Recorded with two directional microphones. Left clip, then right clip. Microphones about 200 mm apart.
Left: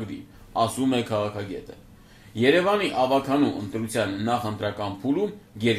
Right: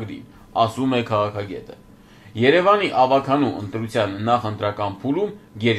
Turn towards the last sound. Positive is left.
turn(degrees=10)  # may be behind; listen again after turning